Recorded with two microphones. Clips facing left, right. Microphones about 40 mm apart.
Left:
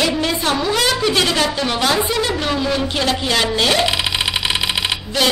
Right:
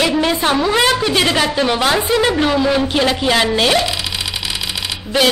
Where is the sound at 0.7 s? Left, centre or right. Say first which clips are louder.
Right 3 dB; right.